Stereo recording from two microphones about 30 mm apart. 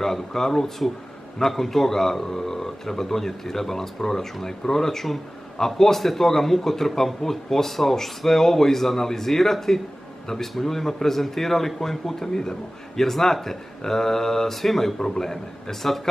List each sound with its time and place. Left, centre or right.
0.0 s a man's voice: centre
15.0 s a man's voice: centre